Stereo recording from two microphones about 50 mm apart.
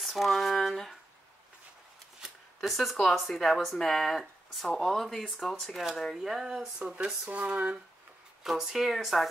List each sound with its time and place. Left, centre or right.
0.0 s speech: centre
2.6 s speech: centre
7.2 s a sound: right
8.5 s speech: centre